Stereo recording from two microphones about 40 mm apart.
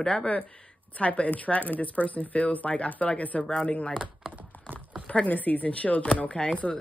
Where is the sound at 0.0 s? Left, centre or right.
Left.